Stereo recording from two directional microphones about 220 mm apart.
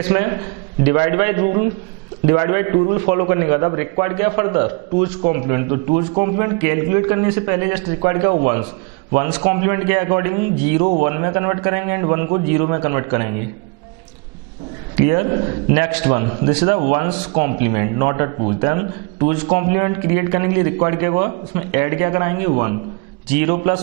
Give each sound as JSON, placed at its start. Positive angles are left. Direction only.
{"t": 0.0, "sound": "a man's voice", "side_deg": -15}
{"t": 15.0, "sound": "a man's voice", "side_deg": -15}